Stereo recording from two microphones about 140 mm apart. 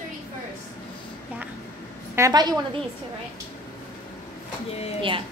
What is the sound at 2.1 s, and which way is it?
Speech, 25° right (ahead or behind).